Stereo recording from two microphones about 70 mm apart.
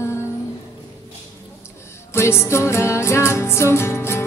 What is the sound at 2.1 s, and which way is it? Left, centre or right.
Music, left.